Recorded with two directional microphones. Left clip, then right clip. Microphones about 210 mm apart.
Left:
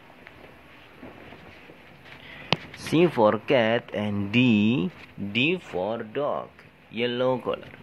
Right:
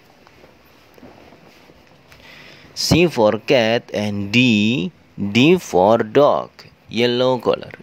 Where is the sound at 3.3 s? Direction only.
60° right (ahead or behind).